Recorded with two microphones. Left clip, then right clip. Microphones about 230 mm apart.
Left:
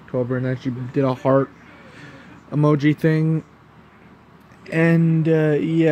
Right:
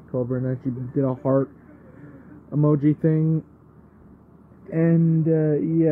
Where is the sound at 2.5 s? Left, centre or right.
Left.